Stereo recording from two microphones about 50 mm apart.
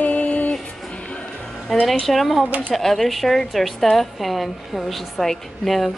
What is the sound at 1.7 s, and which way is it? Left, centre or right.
A woman's voice, centre.